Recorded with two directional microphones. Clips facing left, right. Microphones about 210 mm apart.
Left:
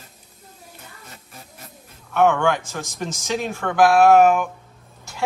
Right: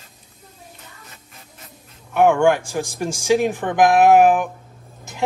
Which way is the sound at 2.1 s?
15° right (ahead or behind).